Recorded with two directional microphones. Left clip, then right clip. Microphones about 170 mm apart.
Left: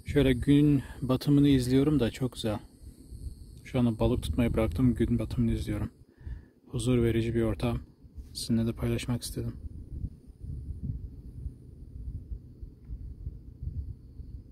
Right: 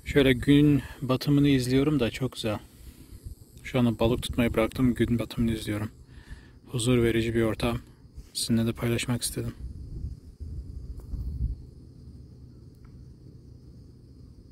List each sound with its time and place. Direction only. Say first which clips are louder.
0.1 s speech: right 4 dB; 5° left (ahead or behind); by 2.6 s 25° left (ahead or behind)
3.6 s speech: right 3 dB; centre (ahead or behind)